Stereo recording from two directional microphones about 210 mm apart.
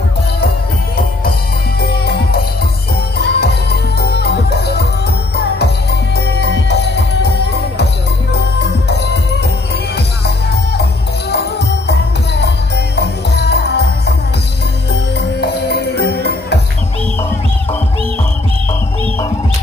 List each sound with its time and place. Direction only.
1.8 s music: 50° left (ahead or behind)
11.2 s music: 50° left (ahead or behind)
15.1 s music: 55° left (ahead or behind)